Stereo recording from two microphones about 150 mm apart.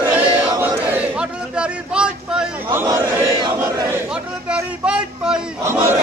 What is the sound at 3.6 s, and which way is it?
Crowd, 20° right (ahead or behind).